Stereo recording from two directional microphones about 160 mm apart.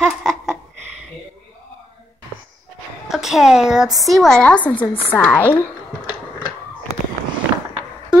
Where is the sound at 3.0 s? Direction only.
5° right (ahead or behind); by 5.6 s 15° left (ahead or behind).